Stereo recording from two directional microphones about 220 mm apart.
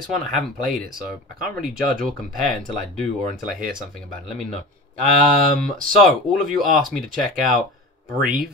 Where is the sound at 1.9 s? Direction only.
Centre (ahead or behind).